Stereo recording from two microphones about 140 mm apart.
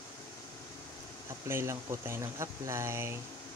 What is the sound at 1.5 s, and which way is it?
Speech, 20° right (ahead or behind).